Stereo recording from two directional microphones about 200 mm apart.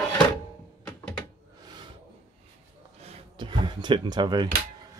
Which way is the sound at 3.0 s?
25° right (ahead or behind).